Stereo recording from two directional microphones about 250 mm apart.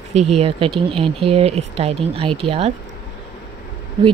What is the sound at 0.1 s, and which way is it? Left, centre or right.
Speech, right.